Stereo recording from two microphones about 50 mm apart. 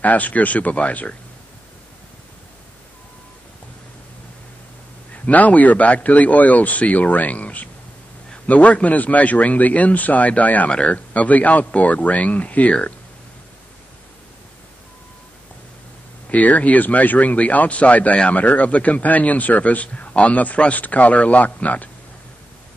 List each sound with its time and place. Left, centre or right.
0.0 s speech: left
5.1 s speech: left
10.7 s speech: left
16.3 s speech: left